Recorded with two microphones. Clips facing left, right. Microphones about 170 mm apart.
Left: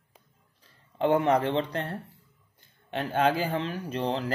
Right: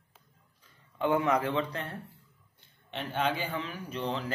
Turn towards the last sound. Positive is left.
turn(degrees=35)  # may be behind; listen again after turning